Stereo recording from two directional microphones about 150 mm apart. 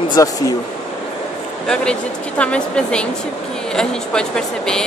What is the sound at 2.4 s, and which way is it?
Speech, 5° left (ahead or behind).